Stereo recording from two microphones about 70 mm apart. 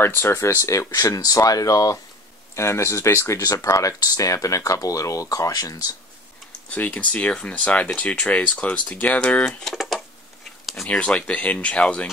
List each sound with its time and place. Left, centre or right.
0.0 s speech: left
2.5 s speech: left
6.7 s speech: centre
9.5 s speech: centre
10.6 s a sound: centre
10.9 s speech: centre